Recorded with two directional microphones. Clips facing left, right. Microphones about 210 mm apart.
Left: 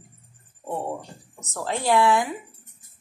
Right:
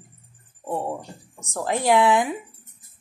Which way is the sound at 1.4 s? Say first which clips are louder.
Right 3 dB; 15° right (ahead or behind).